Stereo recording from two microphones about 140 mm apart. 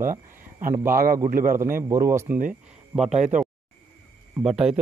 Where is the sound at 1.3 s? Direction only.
80° right.